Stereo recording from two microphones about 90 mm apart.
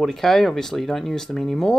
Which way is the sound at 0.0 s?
5° left (ahead or behind).